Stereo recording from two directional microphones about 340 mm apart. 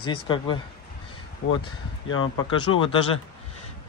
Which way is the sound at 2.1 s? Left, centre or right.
Left.